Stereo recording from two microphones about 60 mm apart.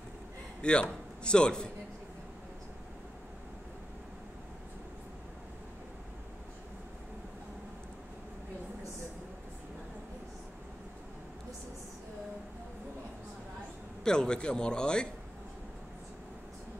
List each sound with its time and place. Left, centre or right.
0.6 s a man's voice: centre
14.0 s speech: centre